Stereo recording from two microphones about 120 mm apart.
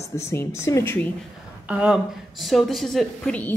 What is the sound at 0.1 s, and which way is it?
Speech, 25° left (ahead or behind).